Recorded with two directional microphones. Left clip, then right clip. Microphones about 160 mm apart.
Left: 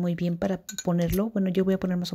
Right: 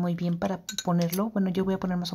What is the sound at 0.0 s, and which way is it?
Speech, 45° left (ahead or behind).